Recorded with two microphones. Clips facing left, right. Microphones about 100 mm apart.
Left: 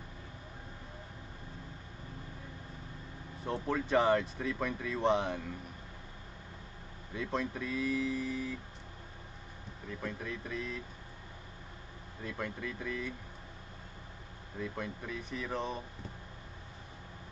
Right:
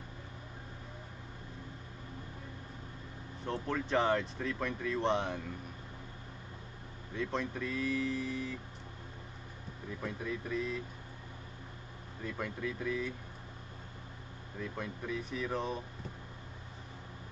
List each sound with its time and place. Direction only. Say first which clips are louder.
3.4 s speech: left 2 dB; 5° left (ahead or behind)
7.2 s speech: even; 5° left (ahead or behind)
9.8 s speech: right 1 dB; 5° right (ahead or behind)
12.3 s speech: right 1 dB; 5° right (ahead or behind)
14.6 s speech: left 1 dB; centre (ahead or behind)